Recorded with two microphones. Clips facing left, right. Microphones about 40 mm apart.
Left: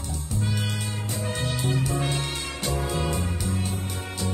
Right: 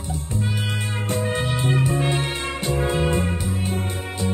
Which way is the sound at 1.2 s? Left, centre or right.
Right.